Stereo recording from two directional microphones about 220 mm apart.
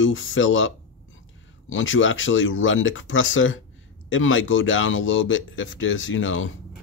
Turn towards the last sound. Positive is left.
turn(degrees=65)  # may be behind; listen again after turning